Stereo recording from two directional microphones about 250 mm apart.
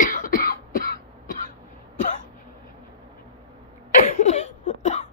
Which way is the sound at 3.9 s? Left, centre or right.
Left.